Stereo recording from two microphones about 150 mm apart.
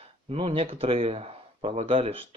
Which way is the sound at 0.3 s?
40° right (ahead or behind).